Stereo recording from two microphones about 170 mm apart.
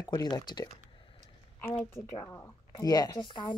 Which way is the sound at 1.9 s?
20° left (ahead or behind).